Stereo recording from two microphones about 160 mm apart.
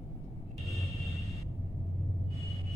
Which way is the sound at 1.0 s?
20° left (ahead or behind).